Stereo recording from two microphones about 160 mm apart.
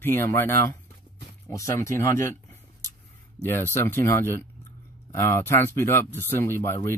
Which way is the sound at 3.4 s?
15° left (ahead or behind).